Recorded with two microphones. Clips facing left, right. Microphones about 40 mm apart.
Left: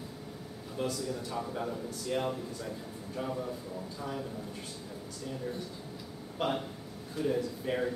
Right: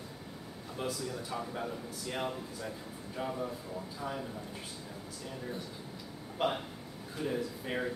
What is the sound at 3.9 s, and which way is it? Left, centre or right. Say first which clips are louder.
Speech: even; centre.